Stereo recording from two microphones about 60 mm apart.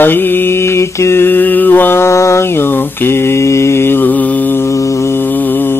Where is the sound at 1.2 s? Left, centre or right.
Left.